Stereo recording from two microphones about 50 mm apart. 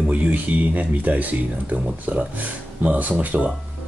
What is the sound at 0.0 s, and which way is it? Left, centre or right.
Speech, right.